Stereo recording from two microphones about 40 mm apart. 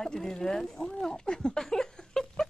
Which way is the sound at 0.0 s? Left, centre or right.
Centre.